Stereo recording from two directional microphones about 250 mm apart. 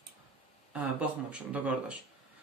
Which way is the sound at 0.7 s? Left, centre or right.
Centre.